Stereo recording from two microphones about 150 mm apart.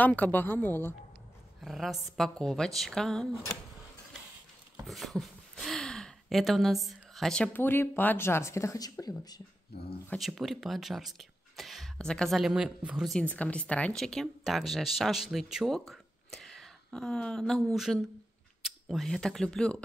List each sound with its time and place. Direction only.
0.0 s speech: 10° left (ahead or behind)
1.6 s speech: centre (ahead or behind)
4.8 s a sound: centre (ahead or behind)
6.9 s speech: centre (ahead or behind); by 9.4 s 25° left (ahead or behind)
9.7 s speech: 90° left
10.1 s speech: centre (ahead or behind)
13.2 s speech: 10° left (ahead or behind)